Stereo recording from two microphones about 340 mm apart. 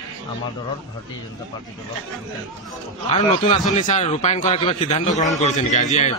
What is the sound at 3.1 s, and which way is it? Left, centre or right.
A man's voice, centre.